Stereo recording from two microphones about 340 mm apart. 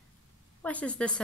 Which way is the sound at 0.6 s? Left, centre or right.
Centre.